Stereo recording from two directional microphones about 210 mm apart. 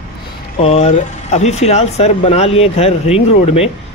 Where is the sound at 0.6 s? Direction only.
30° left (ahead or behind).